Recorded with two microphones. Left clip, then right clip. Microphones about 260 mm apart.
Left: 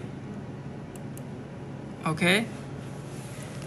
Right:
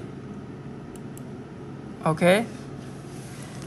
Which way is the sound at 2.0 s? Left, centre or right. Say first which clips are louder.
Right 5 dB; right.